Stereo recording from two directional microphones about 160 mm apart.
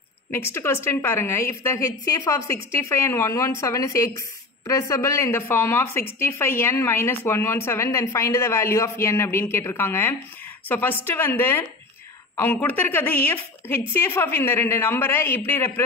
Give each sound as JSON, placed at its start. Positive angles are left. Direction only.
{"t": 0.3, "sound": "a woman's voice", "side_deg": 15}